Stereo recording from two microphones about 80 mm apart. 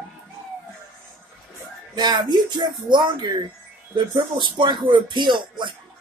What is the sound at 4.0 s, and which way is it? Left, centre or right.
Speech, right.